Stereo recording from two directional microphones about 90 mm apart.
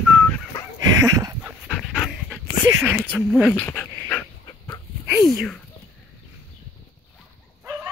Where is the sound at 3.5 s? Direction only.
20° left (ahead or behind).